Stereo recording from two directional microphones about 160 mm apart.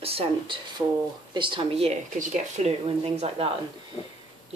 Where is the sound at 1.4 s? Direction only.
30° right (ahead or behind).